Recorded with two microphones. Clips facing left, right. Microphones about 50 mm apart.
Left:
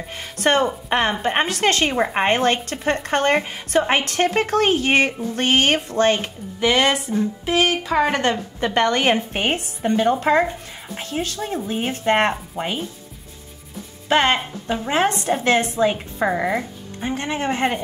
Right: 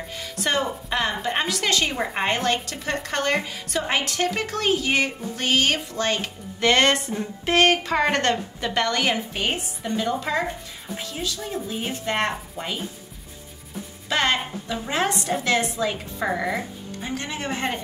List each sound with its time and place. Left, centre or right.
0.1 s speech: left
6.6 s speech: centre
8.5 s speech: left
14.0 s a woman's voice: left
16.3 s a woman's voice: left